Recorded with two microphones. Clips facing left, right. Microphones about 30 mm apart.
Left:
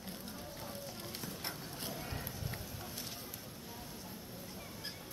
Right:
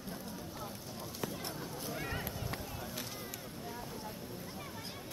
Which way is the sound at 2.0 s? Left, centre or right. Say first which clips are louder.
Right 4 dB; right.